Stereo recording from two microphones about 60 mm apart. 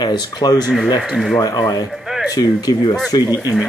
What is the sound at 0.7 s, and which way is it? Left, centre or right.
Speech, centre.